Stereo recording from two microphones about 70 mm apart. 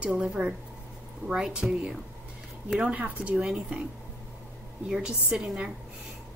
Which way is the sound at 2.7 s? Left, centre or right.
Centre.